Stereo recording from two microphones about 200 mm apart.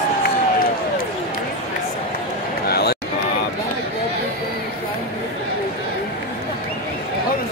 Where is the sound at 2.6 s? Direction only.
50° left (ahead or behind).